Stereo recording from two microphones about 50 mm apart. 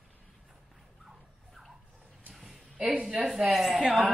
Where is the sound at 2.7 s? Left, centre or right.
Right.